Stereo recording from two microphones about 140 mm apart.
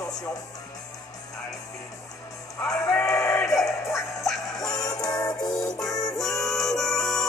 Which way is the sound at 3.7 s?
20° left (ahead or behind).